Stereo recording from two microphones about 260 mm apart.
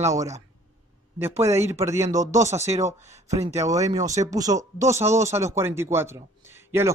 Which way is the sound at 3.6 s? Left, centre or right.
Centre.